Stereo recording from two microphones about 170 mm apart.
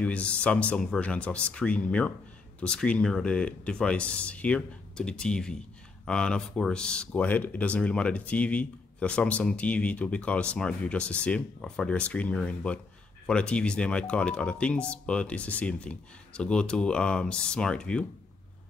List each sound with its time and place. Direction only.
0.0 s speech: 5° left (ahead or behind)